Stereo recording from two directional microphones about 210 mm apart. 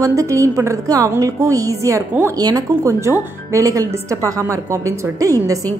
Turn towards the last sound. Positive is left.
turn(degrees=-15)  # may be behind; listen again after turning